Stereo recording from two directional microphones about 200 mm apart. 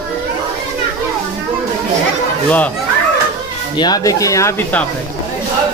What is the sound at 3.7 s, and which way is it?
Speech, 20° left (ahead or behind).